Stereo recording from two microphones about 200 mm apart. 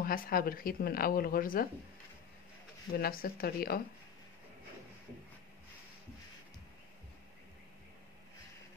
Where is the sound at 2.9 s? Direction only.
50° left (ahead or behind).